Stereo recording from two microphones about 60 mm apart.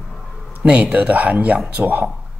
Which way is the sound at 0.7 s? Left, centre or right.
Centre.